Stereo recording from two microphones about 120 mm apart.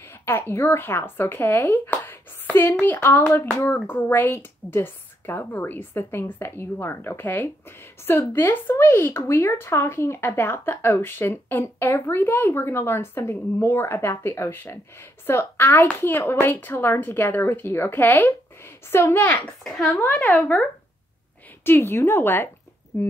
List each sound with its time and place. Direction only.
0.2 s a woman's voice: 20° left (ahead or behind)
2.0 s a sound: 15° left (ahead or behind)
2.6 s a woman's voice: 15° left (ahead or behind)
19.6 s speech: centre (ahead or behind)
20.0 s speech: 20° left (ahead or behind)
21.6 s speech: 20° left (ahead or behind)